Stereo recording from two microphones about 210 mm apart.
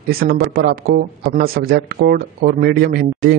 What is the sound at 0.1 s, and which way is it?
Speech, 45° right (ahead or behind).